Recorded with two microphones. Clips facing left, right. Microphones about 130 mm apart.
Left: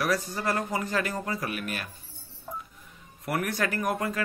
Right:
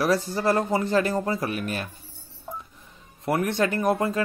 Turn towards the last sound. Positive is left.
turn(degrees=-30)  # may be behind; listen again after turning